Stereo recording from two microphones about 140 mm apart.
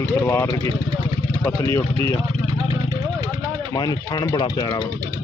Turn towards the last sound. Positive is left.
turn(degrees=30)  # may be behind; listen again after turning